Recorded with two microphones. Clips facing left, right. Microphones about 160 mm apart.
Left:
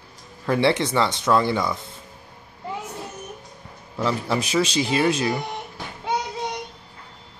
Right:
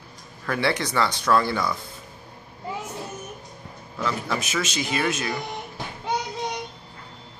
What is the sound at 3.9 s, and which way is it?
Speech, 30° left (ahead or behind).